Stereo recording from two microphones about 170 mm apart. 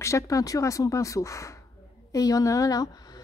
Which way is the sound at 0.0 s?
20° left (ahead or behind).